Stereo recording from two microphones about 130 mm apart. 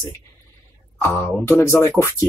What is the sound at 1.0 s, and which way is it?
Speech, 20° left (ahead or behind).